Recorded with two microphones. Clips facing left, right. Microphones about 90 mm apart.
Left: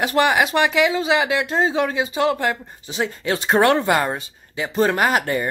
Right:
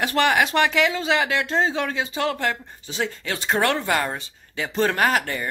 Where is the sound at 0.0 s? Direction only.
15° left (ahead or behind).